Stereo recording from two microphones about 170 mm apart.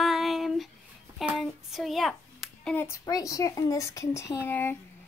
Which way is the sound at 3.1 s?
20° left (ahead or behind).